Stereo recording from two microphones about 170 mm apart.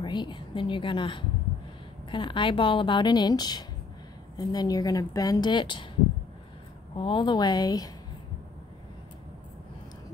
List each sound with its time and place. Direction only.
0.0 s a woman's voice: 25° left (ahead or behind)
7.0 s speech: 30° left (ahead or behind)